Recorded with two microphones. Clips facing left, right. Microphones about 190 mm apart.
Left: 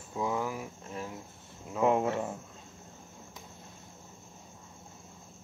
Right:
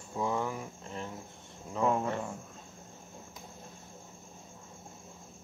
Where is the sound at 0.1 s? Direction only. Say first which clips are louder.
Even; 5° left (ahead or behind).